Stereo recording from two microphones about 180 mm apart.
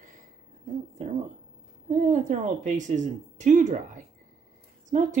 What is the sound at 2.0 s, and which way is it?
Speech, 45° right (ahead or behind).